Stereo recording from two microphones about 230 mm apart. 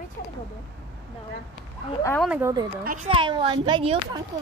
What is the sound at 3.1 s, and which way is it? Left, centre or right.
A child's voice, right.